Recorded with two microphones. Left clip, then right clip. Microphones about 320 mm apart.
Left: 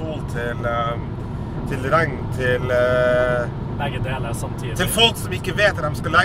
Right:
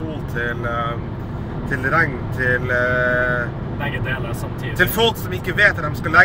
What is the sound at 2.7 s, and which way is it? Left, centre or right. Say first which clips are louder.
Speech: left 4 dB; left.